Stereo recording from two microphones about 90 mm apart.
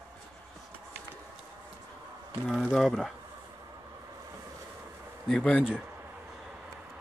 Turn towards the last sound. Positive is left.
turn(degrees=15)  # may be behind; listen again after turning